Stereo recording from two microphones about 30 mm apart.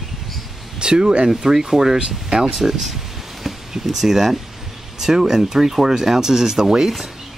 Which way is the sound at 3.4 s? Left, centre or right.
Centre.